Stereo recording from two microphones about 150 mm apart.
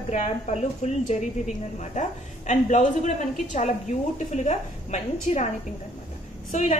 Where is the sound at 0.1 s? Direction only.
50° left (ahead or behind).